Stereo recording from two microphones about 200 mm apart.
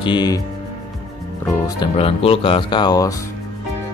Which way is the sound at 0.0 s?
20° left (ahead or behind).